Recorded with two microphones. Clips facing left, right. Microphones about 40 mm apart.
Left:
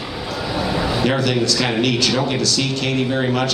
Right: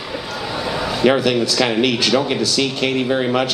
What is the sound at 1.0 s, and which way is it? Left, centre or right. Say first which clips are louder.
A man's voice: right 6 dB; centre.